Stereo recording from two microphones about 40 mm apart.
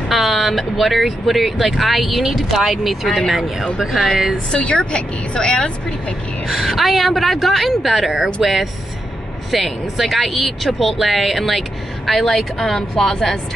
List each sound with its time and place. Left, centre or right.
0.1 s speech: centre
3.3 s speech: centre
4.5 s speech: left
6.4 s a woman's voice: centre